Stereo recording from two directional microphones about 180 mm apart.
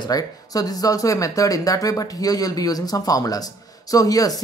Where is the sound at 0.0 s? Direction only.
20° left (ahead or behind).